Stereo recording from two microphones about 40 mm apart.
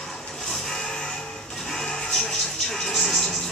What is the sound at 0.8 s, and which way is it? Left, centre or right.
Music, centre.